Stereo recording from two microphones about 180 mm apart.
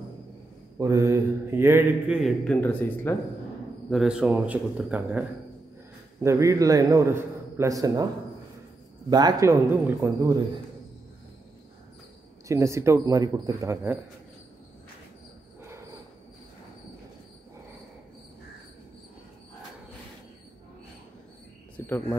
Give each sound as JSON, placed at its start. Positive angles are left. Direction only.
{"t": 0.7, "sound": "a man's voice", "side_deg": -15}
{"t": 2.2, "sound": "speech", "side_deg": 5}
{"t": 3.9, "sound": "a man's voice", "side_deg": -5}
{"t": 6.2, "sound": "a man's voice", "side_deg": -15}
{"t": 9.1, "sound": "a man's voice", "side_deg": -20}
{"t": 12.4, "sound": "a man's voice", "side_deg": -15}
{"t": 21.7, "sound": "cricket", "side_deg": 10}